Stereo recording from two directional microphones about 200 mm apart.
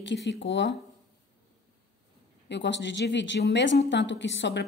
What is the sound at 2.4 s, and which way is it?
Speech, 60° left (ahead or behind).